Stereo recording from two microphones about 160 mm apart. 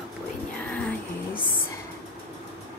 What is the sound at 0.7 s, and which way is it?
Music, 10° left (ahead or behind).